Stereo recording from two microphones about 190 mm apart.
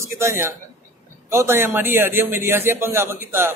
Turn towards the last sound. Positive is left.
turn(degrees=-10)  # may be behind; listen again after turning